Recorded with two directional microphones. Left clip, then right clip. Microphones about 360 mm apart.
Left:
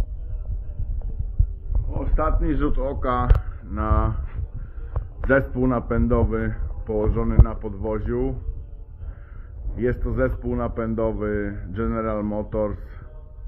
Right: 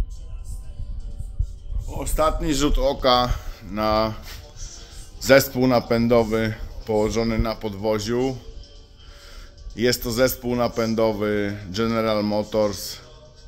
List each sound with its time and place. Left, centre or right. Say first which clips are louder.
1.9 s a man's voice: right 4 dB; centre
5.3 s a man's voice: right 5 dB; centre
9.8 s a man's voice: right 4 dB; centre